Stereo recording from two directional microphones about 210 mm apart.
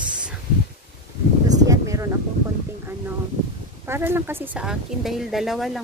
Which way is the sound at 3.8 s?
10° right (ahead or behind).